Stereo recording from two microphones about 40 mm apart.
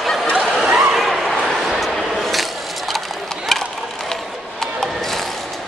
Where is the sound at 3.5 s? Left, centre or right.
Centre.